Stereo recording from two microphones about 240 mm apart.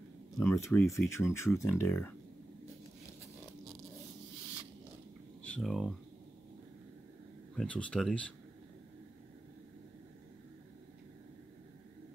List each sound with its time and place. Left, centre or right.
0.4 s speech: centre
5.4 s speech: centre
7.5 s speech: centre